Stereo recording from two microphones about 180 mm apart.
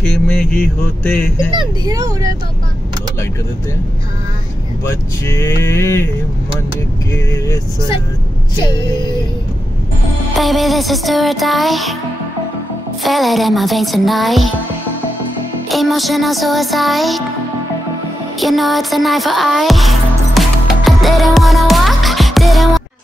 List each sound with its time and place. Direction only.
0.0 s music: 5° left (ahead or behind)
1.5 s speech: 25° right (ahead or behind)
4.8 s speech: 15° left (ahead or behind)
7.2 s speech: 15° left (ahead or behind)
10.3 s music: centre (ahead or behind)
13.0 s music: centre (ahead or behind)
15.7 s music: centre (ahead or behind)
18.4 s music: centre (ahead or behind)